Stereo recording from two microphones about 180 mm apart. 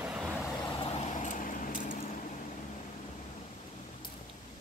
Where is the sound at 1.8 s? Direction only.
50° left (ahead or behind).